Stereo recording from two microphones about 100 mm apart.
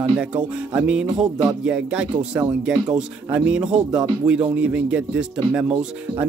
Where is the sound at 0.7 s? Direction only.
10° right (ahead or behind).